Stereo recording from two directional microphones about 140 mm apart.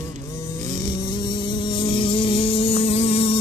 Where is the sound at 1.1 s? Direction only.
30° left (ahead or behind).